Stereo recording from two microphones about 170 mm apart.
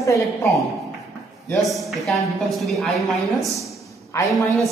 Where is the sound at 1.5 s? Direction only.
Centre (ahead or behind).